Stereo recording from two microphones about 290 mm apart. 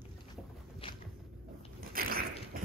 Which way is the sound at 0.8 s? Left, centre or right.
Centre.